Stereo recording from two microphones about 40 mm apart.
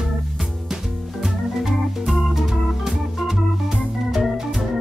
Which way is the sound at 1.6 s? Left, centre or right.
Centre.